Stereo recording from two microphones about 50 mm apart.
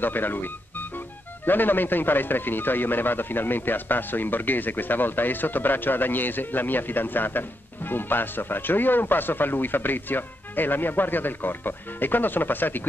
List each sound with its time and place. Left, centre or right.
0.0 s speech: left